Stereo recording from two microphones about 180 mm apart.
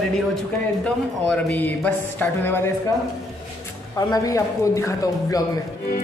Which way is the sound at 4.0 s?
20° left (ahead or behind).